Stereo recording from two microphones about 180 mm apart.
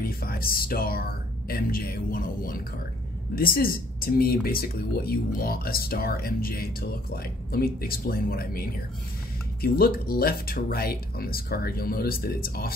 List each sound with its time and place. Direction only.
0.0 s speech: 55° left (ahead or behind)